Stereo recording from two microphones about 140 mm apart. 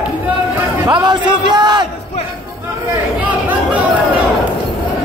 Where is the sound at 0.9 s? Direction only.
35° right (ahead or behind).